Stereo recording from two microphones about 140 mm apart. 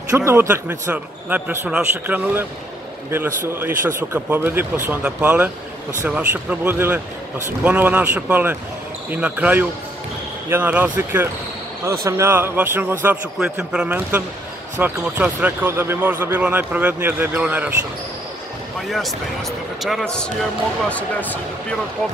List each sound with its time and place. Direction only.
0.1 s speech: 20° right (ahead or behind)
3.4 s speech: 15° right (ahead or behind)
18.8 s speech: centre (ahead or behind)